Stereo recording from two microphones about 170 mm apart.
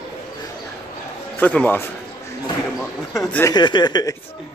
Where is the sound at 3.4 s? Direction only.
25° left (ahead or behind).